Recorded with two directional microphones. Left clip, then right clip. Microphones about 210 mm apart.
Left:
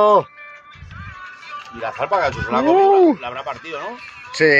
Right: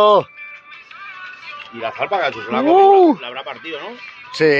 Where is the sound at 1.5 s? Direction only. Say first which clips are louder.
Right 1 dB; 10° right (ahead or behind).